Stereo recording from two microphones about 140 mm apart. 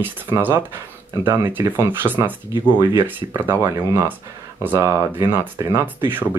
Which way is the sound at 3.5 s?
20° right (ahead or behind).